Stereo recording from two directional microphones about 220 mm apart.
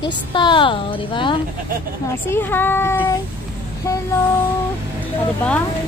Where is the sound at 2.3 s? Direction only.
10° left (ahead or behind).